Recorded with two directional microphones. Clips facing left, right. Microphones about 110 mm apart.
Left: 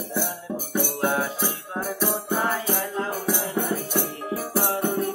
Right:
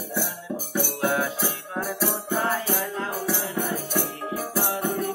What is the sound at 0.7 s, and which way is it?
Music, 35° left (ahead or behind).